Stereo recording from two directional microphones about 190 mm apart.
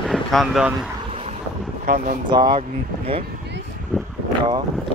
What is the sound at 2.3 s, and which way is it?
Speech, 25° right (ahead or behind).